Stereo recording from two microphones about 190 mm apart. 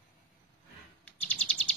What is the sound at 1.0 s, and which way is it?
Bird, 5° left (ahead or behind).